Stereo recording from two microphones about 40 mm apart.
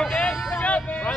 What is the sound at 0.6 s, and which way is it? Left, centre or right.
Speech, left.